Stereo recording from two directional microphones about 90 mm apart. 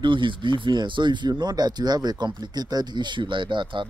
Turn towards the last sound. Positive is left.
turn(degrees=-65)  # may be behind; listen again after turning